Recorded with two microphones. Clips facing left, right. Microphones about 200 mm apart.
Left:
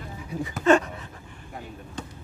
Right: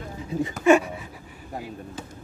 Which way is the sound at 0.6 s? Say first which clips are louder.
Right 2 dB; 10° right (ahead or behind).